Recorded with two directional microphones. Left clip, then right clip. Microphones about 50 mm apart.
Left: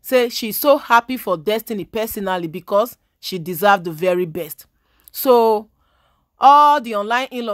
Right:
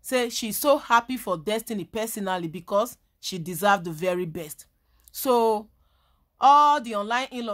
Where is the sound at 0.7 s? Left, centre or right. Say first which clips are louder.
Left 7 dB; left.